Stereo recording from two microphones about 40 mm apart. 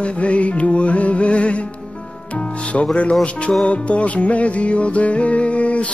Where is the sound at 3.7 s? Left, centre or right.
Left.